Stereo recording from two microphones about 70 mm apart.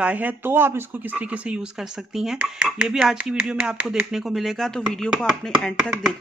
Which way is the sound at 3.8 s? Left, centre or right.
Centre.